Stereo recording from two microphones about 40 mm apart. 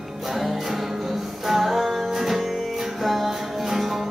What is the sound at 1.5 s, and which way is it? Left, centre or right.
Music, centre.